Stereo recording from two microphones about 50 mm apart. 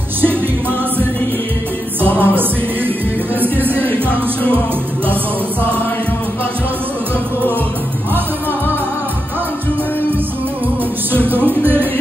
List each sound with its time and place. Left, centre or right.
2.0 s music: left
3.3 s music: right
3.7 s music: left
11.1 s music: right